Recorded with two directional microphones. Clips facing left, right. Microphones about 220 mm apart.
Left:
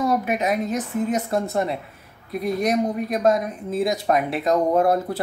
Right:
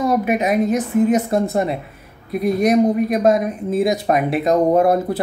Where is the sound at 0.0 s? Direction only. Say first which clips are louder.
Right 4 dB; 15° right (ahead or behind).